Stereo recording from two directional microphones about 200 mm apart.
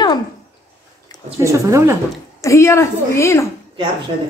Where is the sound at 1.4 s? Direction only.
15° right (ahead or behind).